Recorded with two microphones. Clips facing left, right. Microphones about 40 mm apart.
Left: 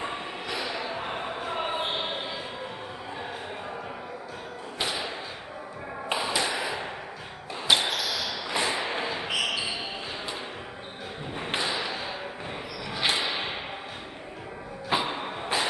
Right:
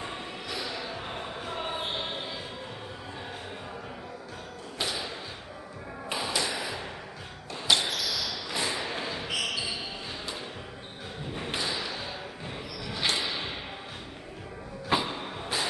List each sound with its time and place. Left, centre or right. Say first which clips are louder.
0.0 s a sound: left 4 dB; left
4.7 s thump: left 2 dB; centre
6.1 s tap: left 3 dB; centre
7.6 s basketball bounce: left 2 dB; left
11.3 s thump: left 3 dB; left
12.9 s a sound: left 3 dB; centre
14.9 s vehicle: left 1 dB; centre